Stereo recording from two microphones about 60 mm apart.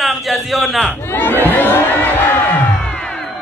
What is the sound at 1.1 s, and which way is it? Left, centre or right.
Crowd, left.